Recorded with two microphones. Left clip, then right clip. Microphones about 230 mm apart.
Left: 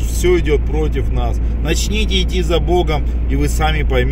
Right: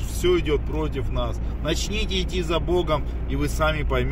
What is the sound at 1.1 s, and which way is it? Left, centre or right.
Speech, right.